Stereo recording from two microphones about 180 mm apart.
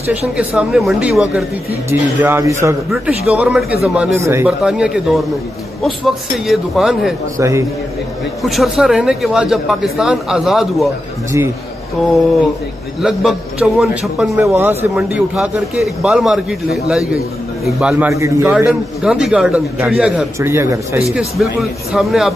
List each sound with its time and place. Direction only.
0.4 s a man's voice: 5° right (ahead or behind)
4.2 s a man's voice: 15° right (ahead or behind)
4.6 s speech: 5° right (ahead or behind)
7.3 s a man's voice: 15° right (ahead or behind)
8.4 s speech: centre (ahead or behind)
11.3 s a man's voice: 15° right (ahead or behind)
13.0 s speech: centre (ahead or behind)
14.4 s a man's voice: 15° right (ahead or behind)
17.9 s a man's voice: 15° right (ahead or behind)
21.1 s speech: centre (ahead or behind)